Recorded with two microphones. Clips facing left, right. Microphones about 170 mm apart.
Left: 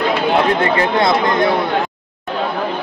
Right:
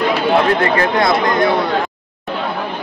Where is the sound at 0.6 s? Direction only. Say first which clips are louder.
Even; 25° left (ahead or behind).